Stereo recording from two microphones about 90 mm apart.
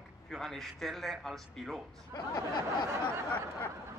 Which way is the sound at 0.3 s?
5° left (ahead or behind).